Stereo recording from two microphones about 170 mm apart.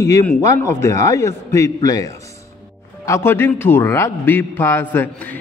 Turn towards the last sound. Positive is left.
turn(degrees=15)  # may be behind; listen again after turning